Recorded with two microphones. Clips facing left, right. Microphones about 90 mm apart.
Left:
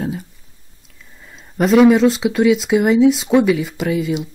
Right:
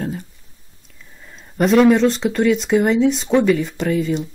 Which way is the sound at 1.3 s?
Centre (ahead or behind).